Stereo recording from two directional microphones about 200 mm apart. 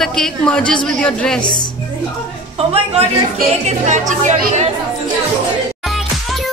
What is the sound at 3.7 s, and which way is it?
Speech, 35° right (ahead or behind).